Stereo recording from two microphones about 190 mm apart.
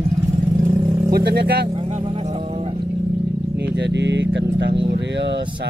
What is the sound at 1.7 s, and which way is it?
Vehicle, 30° right (ahead or behind).